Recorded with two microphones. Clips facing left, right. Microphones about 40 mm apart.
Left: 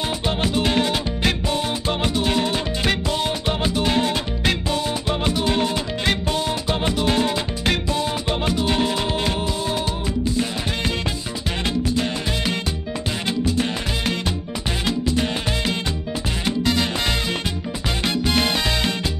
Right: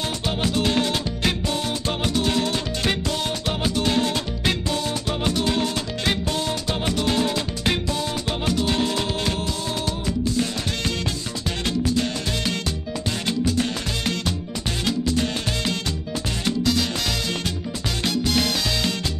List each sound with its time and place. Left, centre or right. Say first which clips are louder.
0.3 s music: left 1 dB; centre
11.6 s music: even; centre
18.0 s music: left 1 dB; left